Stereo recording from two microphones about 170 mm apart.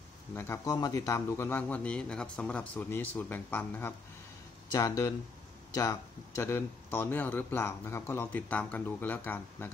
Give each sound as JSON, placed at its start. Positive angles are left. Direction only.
{"t": 0.4, "sound": "a man's voice", "side_deg": 20}